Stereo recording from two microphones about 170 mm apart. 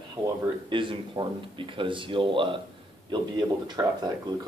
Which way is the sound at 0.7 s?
30° right (ahead or behind).